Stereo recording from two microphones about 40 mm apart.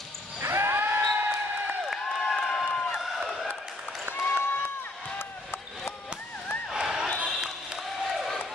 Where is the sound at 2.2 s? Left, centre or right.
Centre.